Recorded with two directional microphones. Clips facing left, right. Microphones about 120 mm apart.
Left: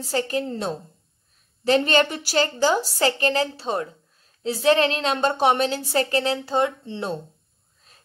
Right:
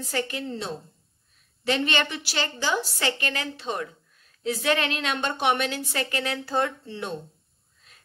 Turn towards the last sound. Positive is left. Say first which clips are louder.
# left 5 dB
turn(degrees=30)  # may be behind; listen again after turning